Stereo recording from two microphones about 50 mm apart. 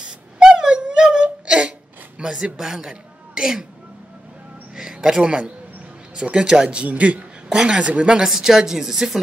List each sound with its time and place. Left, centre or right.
0.4 s a sound: centre
2.1 s a man's voice: centre
4.7 s a man's voice: centre
7.4 s a woman's voice: centre
8.3 s a woman's voice: centre